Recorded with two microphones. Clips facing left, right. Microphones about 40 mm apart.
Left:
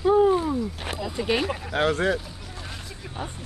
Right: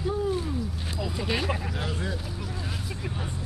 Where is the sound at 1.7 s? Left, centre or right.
Left.